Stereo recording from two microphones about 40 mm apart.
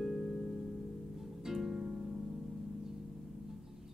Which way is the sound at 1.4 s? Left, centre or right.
Centre.